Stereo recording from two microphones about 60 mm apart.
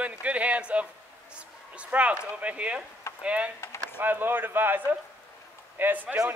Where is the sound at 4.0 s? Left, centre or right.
Right.